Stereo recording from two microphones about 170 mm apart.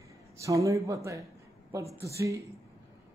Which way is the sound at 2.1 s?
20° right (ahead or behind).